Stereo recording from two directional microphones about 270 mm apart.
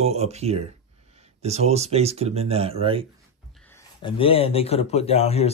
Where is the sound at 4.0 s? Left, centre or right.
Centre.